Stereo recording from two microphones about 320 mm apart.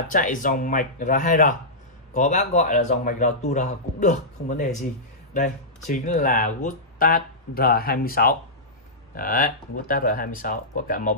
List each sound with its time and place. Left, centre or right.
0.1 s speech: left